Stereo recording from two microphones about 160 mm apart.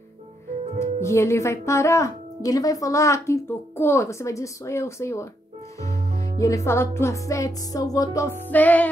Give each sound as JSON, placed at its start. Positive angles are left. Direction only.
{"t": 0.7, "sound": "speech", "side_deg": 15}